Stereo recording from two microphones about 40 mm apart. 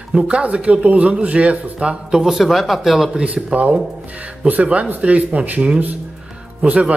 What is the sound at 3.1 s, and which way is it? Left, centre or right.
Speech, right.